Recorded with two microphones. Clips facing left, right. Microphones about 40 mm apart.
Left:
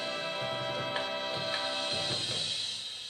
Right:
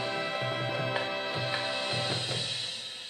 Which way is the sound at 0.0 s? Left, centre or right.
Right.